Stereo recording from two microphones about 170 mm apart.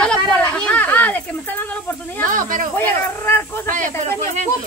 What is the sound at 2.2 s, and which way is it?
Speech, 50° right (ahead or behind).